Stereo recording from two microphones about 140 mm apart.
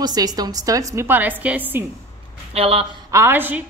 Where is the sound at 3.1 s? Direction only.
15° right (ahead or behind).